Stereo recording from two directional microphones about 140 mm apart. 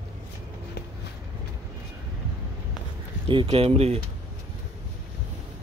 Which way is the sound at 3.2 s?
40° right (ahead or behind).